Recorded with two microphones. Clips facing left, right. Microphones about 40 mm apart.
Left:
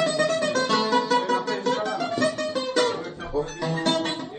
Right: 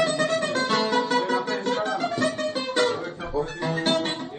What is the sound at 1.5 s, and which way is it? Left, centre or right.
Music, right.